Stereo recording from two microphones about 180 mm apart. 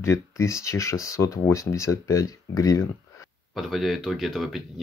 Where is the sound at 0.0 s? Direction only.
15° left (ahead or behind).